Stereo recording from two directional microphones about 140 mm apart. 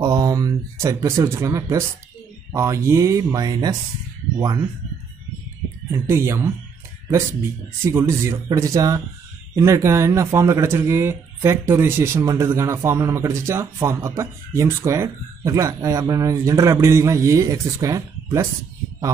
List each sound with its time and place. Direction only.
0.0 s speech: 25° right (ahead or behind)
5.9 s speech: 15° right (ahead or behind)
7.8 s speech: 20° right (ahead or behind)